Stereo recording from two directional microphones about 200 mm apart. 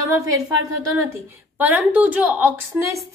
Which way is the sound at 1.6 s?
10° right (ahead or behind).